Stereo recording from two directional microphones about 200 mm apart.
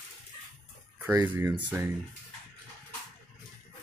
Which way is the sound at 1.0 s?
10° right (ahead or behind).